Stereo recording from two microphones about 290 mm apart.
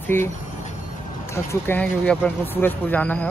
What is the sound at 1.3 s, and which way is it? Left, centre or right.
Speech, centre.